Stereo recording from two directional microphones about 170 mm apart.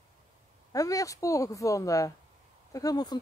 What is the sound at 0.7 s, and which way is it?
Speech, 20° left (ahead or behind).